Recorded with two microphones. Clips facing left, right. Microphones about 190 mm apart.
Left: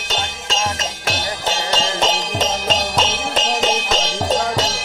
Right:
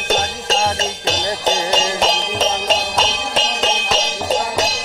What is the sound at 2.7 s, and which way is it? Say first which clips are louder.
Jingle bell: right 1 dB; 5° right (ahead or behind).